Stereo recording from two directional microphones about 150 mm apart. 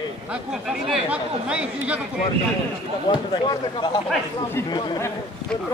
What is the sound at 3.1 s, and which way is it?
Speech, 30° left (ahead or behind).